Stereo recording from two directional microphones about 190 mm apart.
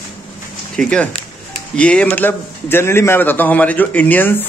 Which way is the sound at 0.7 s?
5° left (ahead or behind).